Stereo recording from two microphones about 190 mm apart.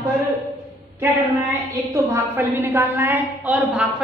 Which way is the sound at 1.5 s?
15° right (ahead or behind).